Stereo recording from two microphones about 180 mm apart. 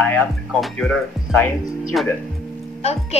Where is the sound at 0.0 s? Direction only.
5° left (ahead or behind).